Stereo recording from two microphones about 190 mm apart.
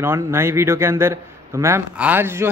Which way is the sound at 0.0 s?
15° right (ahead or behind).